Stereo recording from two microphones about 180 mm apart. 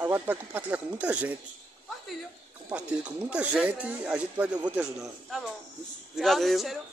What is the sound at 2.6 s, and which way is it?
A man's voice, 5° right (ahead or behind).